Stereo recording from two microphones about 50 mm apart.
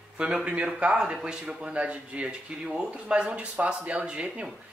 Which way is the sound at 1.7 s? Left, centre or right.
Right.